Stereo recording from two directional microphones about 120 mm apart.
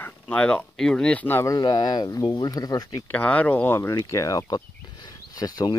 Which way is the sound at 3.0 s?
10° left (ahead or behind).